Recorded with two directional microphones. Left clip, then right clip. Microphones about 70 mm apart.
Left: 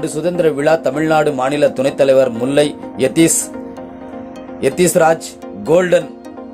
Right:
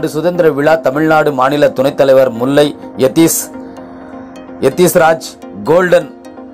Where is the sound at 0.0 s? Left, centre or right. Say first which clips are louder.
Right 4 dB; centre.